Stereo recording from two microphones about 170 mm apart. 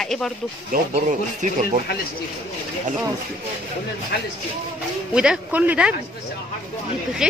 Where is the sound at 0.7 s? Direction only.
45° right (ahead or behind).